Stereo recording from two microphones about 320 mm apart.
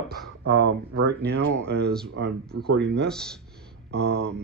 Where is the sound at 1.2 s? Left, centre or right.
Right.